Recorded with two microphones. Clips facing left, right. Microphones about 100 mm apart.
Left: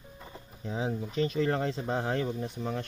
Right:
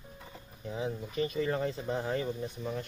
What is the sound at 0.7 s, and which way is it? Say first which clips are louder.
Speech: left 3 dB; 90° left.